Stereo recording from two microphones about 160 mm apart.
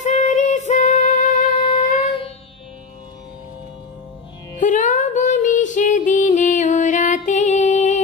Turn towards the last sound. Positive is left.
turn(degrees=50)  # may be behind; listen again after turning